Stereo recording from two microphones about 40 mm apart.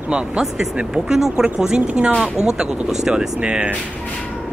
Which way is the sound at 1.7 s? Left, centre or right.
Right.